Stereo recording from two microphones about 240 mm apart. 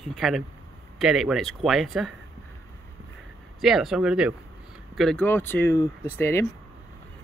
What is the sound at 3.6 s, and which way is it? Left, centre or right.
Speech, centre.